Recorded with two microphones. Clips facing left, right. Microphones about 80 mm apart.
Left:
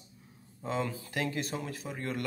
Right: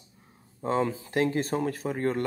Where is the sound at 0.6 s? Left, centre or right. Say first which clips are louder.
Right 7 dB; right.